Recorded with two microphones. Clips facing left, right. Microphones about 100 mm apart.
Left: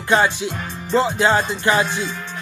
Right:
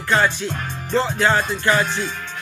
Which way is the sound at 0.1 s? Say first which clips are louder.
Left 2 dB; 15° left (ahead or behind).